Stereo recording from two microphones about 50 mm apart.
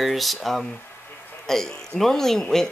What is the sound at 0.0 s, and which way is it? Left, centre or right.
Speech, centre.